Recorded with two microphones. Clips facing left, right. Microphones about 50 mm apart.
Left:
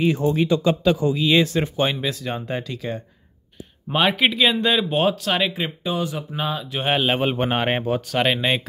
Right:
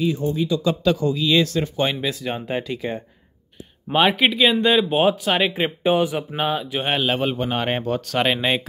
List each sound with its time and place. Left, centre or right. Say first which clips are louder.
0.0 s speech: left 2 dB; left
0.5 s a man's voice: left 2 dB; left
0.8 s speech: left 1 dB; left
1.8 s speech: even; centre
3.9 s speech: right 2 dB; centre; by 6.7 s right
6.7 s speech: left 1 dB; centre
7.0 s a man's voice: left 2 dB; centre